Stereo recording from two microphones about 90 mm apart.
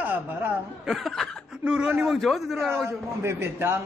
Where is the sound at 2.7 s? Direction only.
30° right (ahead or behind).